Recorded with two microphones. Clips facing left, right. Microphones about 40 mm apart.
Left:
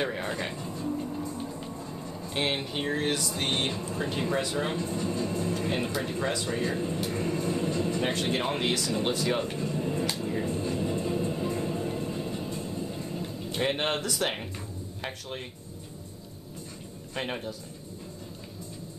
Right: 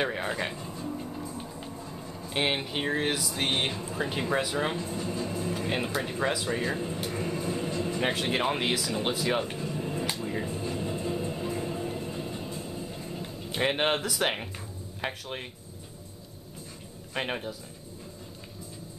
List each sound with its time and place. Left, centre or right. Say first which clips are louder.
0.0 s music: right 1 dB; centre
1.7 s speech: left 2 dB; centre
10.1 s music: left 2 dB; centre
15.0 s speech: right 3 dB; centre
17.1 s speech: right 1 dB; centre